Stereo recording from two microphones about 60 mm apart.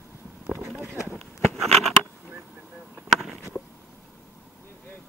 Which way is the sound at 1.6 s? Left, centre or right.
Centre.